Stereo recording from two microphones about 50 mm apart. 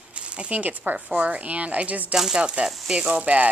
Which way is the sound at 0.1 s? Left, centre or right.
Right.